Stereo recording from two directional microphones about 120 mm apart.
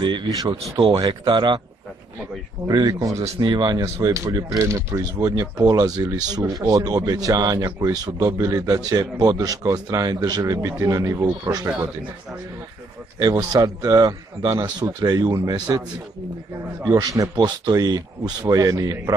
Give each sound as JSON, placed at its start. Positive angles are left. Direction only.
{"t": 0.0, "sound": "speech", "side_deg": -40}
{"t": 2.7, "sound": "speech", "side_deg": -30}
{"t": 13.3, "sound": "speech", "side_deg": -25}
{"t": 16.8, "sound": "speech", "side_deg": -30}